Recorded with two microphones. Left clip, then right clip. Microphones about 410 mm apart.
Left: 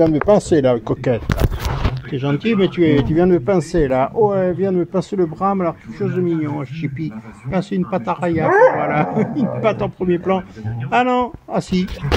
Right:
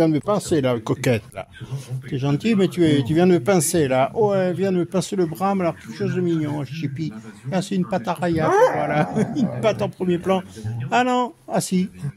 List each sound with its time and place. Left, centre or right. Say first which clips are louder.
0.3 s speech: left 7 dB; right
8.5 s speech: left 5 dB; right
8.7 s speech: left 3 dB; right